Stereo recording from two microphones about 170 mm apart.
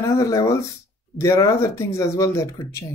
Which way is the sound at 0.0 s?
20° left (ahead or behind).